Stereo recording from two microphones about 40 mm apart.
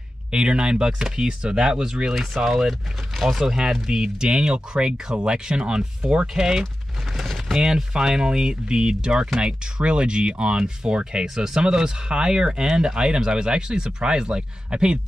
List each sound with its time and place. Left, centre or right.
0.3 s speech: right
2.1 s speech: centre
3.4 s speech: centre
7.2 s a sound: centre
7.5 s speech: centre